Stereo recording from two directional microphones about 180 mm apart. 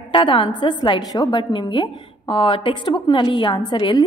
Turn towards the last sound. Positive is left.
turn(degrees=25)  # may be behind; listen again after turning